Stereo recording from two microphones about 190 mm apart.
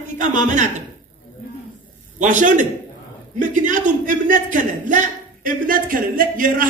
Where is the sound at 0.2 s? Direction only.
40° right (ahead or behind).